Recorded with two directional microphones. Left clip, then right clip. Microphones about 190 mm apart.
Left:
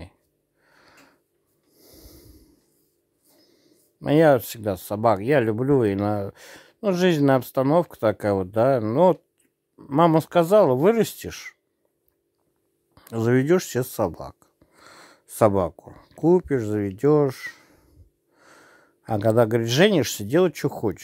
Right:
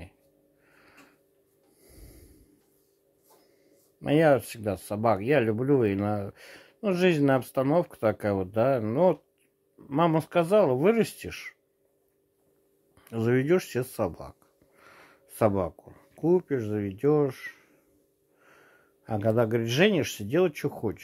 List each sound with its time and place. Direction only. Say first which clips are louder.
0.7 s a sound: left 3 dB; 25° left (ahead or behind)
1.8 s snort: left 6 dB; 25° left (ahead or behind)
4.0 s speech: left 5 dB; 25° left (ahead or behind)
5.0 s speech: left 5 dB; 35° left (ahead or behind)
5.3 s speech: left 4 dB; 25° left (ahead or behind)
13.0 s speech: left 5 dB; 30° left (ahead or behind)